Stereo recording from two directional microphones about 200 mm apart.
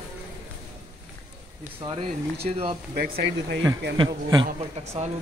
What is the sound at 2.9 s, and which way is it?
Speech, 55° right (ahead or behind).